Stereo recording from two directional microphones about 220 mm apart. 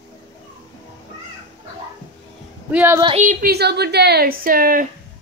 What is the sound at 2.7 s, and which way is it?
Speech, 10° right (ahead or behind).